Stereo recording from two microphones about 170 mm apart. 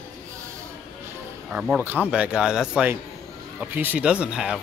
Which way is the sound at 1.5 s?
5° right (ahead or behind).